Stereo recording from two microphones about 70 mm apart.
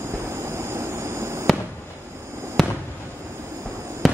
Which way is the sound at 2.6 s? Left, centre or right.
Centre.